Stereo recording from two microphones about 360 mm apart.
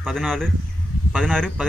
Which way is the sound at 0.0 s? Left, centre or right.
Centre.